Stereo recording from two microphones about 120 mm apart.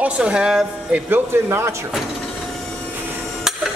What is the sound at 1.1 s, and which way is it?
Speech, 20° right (ahead or behind).